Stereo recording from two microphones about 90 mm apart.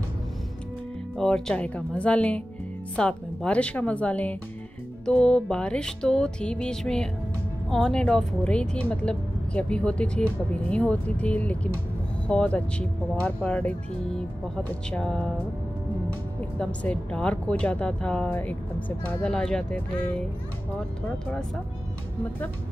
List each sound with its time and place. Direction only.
1.1 s a woman's voice: 5° left (ahead or behind)
16.5 s a woman's voice: 10° left (ahead or behind)